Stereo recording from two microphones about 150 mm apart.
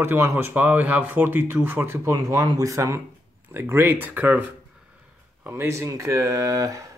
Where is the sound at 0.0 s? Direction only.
15° right (ahead or behind).